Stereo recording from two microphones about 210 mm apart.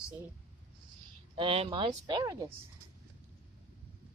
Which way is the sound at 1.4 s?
25° right (ahead or behind).